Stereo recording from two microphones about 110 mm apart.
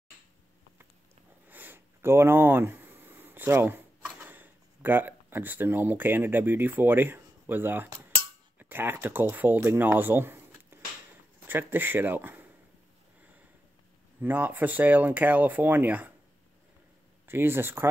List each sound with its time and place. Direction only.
1.5 s sniff: 15° right (ahead or behind)
8.5 s speech: 20° right (ahead or behind)
14.2 s speech: 15° right (ahead or behind)
17.3 s speech: 20° right (ahead or behind)